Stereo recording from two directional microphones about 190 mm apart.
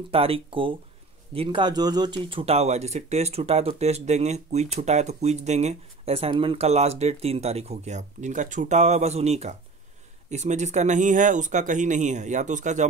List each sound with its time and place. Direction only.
0.1 s speech: 30° right (ahead or behind)